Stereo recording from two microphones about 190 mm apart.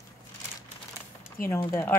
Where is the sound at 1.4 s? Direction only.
15° left (ahead or behind).